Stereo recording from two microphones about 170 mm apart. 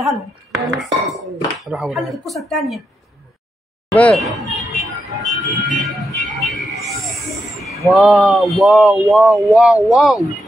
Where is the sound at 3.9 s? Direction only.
5° left (ahead or behind).